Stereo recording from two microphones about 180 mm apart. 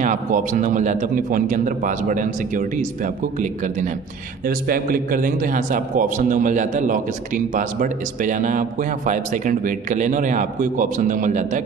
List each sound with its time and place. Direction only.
0.0 s a man's voice: 45° right (ahead or behind)